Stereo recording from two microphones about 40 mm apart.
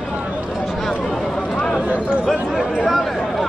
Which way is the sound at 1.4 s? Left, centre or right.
Left.